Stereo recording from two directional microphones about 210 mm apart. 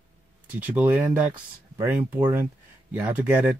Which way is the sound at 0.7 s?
5° right (ahead or behind).